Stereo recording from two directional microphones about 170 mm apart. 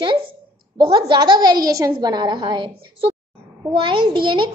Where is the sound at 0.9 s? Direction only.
25° right (ahead or behind).